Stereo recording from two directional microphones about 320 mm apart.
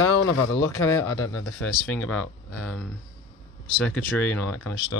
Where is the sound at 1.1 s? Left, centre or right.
Left.